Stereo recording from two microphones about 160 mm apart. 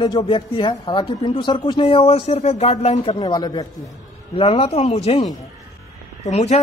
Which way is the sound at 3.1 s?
25° left (ahead or behind).